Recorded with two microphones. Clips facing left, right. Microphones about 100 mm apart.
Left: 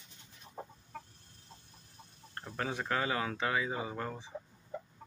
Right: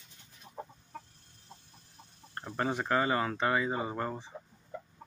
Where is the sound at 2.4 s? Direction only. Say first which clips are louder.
Right 4 dB; 20° right (ahead or behind).